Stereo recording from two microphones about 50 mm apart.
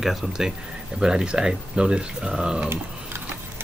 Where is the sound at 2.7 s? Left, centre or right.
Right.